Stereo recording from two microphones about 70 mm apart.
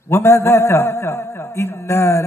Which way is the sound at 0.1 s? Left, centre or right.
Left.